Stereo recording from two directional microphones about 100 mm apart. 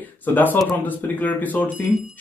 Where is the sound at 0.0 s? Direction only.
20° left (ahead or behind).